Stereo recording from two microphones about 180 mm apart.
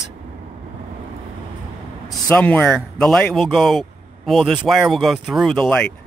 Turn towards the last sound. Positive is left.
turn(degrees=5)  # may be behind; listen again after turning